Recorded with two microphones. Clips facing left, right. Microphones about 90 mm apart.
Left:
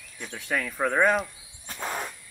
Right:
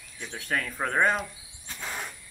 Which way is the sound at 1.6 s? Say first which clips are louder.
Left 5 dB; 40° left (ahead or behind).